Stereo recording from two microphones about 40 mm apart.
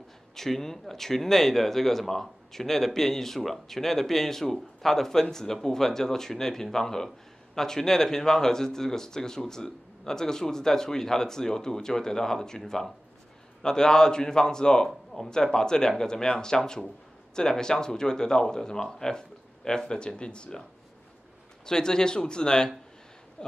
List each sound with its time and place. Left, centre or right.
0.4 s speech: centre
21.6 s speech: centre